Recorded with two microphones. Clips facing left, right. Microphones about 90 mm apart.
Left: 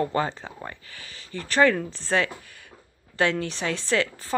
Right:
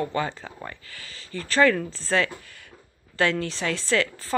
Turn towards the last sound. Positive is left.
turn(degrees=20)  # may be behind; listen again after turning